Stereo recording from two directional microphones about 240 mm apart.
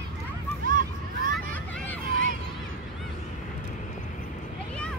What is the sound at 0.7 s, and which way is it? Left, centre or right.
Vehicle, right.